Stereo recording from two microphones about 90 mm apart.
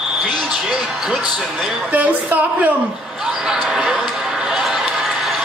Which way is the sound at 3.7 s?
5° right (ahead or behind).